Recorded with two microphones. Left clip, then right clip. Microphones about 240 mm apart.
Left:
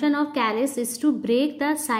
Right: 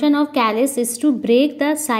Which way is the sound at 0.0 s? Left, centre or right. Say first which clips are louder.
Right 6 dB; centre.